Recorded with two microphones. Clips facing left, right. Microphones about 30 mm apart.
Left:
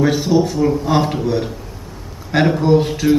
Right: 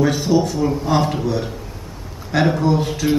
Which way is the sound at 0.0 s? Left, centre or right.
Centre.